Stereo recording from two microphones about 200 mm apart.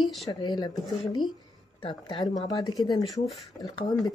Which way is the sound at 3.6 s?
20° left (ahead or behind).